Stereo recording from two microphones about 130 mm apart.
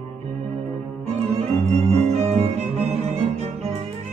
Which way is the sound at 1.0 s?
55° right (ahead or behind).